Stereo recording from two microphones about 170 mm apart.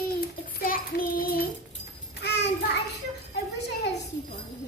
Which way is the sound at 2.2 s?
85° left.